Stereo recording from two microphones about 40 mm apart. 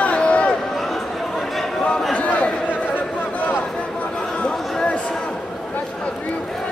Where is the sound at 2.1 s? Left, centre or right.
Left.